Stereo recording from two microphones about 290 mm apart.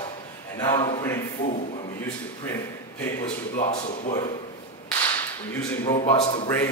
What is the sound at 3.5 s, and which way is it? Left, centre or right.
Speech, left.